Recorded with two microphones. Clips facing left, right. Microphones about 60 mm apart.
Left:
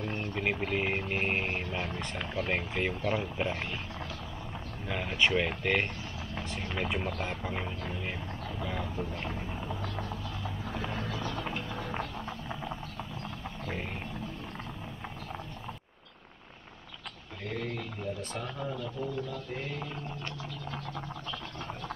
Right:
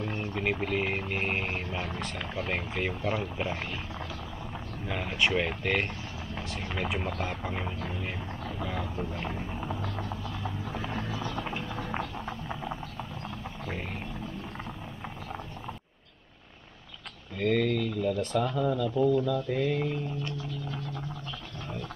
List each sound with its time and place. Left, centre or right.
0.0 s speech: centre
4.8 s speech: centre
8.5 s a sound: centre
11.4 s music: centre
11.9 s a sound: centre
17.4 s speech: right
18.6 s speech: right
19.2 s speech: right